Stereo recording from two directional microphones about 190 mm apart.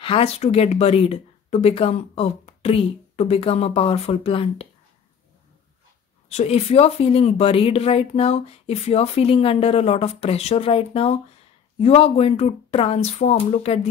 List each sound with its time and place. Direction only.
0.0 s speech: 30° left (ahead or behind)
6.2 s speech: 35° left (ahead or behind)